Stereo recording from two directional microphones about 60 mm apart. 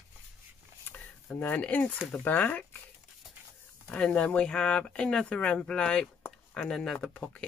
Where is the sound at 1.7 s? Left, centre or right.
Left.